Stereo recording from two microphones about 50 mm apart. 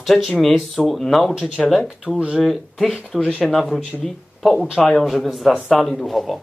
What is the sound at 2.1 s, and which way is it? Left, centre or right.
Speech, left.